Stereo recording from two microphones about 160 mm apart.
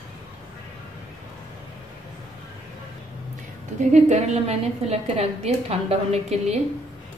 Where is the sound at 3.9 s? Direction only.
45° right (ahead or behind).